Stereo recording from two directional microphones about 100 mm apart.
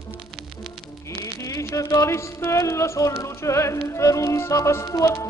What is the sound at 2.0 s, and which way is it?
Music, 30° left (ahead or behind).